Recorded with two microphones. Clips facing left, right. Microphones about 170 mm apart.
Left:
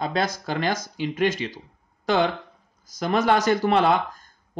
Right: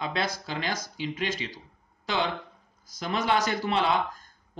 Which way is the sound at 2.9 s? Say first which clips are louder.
Left 6 dB; 45° left (ahead or behind).